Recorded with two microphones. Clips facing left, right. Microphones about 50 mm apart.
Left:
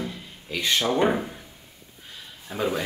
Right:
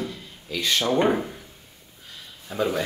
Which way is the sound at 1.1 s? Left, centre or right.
Centre.